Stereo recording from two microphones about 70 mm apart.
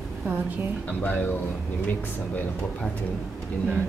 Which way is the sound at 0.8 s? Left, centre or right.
Left.